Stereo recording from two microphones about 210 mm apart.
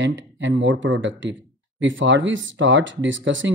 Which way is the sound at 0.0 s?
60° right (ahead or behind).